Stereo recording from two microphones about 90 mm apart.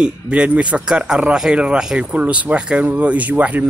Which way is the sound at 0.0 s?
15° right (ahead or behind).